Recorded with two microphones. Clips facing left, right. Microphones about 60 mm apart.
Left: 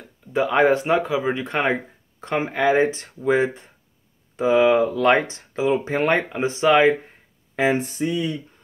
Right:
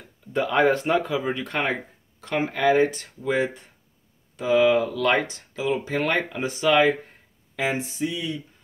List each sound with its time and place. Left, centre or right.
0.3 s speech: centre
1.4 s speech: left
7.8 s speech: left